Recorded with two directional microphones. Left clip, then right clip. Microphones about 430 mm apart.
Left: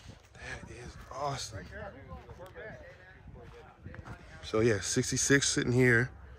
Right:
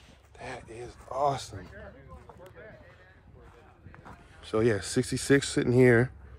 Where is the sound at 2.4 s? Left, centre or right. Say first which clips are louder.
Left 4 dB; centre.